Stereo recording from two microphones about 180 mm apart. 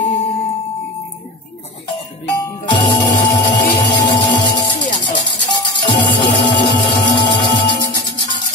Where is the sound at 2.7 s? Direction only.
25° left (ahead or behind).